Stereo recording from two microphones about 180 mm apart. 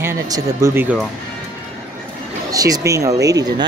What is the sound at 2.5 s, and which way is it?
Speech, 20° right (ahead or behind).